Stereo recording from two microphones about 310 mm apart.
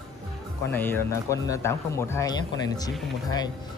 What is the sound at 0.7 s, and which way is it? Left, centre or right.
Speech, centre.